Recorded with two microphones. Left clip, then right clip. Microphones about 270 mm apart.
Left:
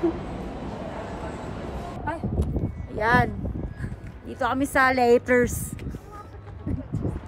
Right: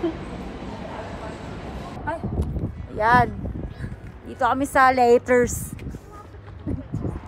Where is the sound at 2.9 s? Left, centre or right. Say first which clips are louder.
Right 4 dB; centre.